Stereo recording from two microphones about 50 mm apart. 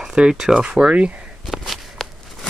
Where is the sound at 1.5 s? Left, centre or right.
Centre.